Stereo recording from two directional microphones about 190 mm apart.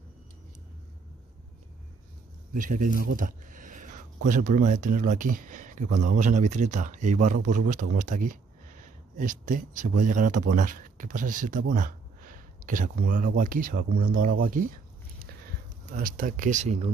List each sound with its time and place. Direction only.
2.5 s speech: 45° right (ahead or behind)
15.9 s speech: 45° right (ahead or behind)